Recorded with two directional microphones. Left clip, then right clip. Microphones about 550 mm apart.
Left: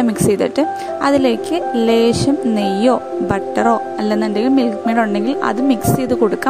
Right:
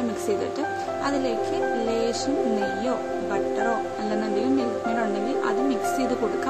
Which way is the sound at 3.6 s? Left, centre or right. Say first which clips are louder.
Left 10 dB; centre.